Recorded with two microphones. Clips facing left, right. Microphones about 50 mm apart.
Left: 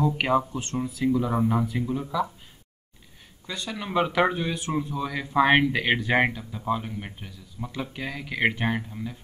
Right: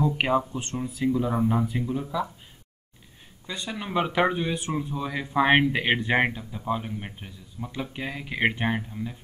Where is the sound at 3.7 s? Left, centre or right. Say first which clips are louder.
Left 1 dB; centre.